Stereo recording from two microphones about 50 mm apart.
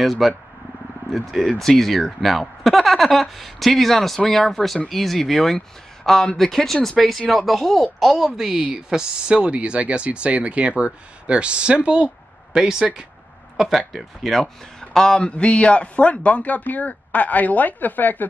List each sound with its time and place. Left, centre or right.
0.0 s speech: centre; by 12.1 s right
12.5 s speech: centre
14.4 s a man's voice: centre; by 18.2 s left